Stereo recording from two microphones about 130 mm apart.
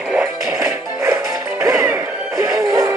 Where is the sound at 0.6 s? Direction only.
20° right (ahead or behind).